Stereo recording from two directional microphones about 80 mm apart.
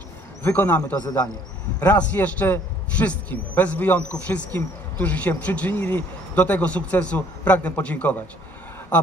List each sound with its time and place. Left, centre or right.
0.4 s speech: left